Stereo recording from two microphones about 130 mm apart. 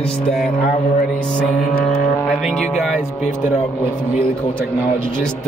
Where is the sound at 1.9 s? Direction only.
Centre (ahead or behind).